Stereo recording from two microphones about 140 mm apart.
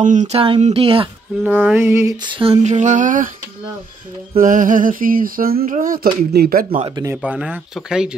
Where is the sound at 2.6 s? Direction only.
60° right (ahead or behind).